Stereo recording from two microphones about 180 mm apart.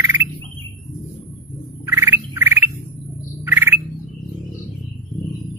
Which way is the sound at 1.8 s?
15° right (ahead or behind).